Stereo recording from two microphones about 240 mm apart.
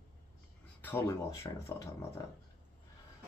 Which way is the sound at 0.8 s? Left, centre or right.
Centre.